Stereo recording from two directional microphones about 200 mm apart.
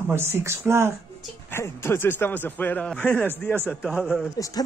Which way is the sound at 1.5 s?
10° left (ahead or behind).